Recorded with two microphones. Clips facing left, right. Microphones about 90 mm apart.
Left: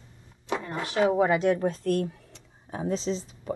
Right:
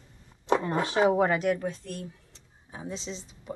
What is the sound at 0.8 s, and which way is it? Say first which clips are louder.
Speech: left 3 dB; 25° right (ahead or behind).